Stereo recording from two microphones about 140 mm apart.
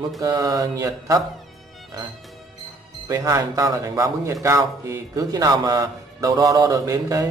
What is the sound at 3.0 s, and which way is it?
Speech, 25° right (ahead or behind).